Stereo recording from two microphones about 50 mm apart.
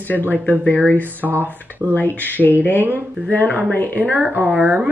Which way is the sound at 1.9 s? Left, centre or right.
Left.